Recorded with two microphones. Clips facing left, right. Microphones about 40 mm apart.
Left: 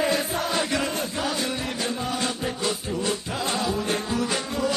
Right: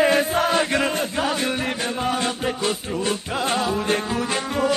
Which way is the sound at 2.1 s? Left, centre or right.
Right.